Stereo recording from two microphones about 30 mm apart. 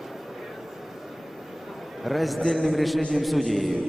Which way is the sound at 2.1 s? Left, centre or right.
Centre.